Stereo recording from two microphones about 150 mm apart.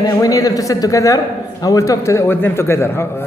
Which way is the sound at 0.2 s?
25° left (ahead or behind).